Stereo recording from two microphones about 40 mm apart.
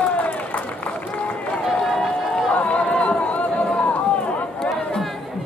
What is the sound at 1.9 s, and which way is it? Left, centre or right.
Run, centre.